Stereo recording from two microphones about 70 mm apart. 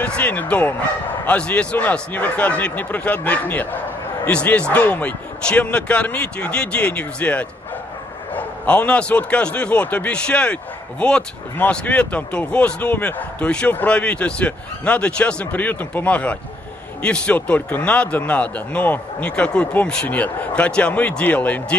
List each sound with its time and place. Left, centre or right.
0.0 s a man's voice: left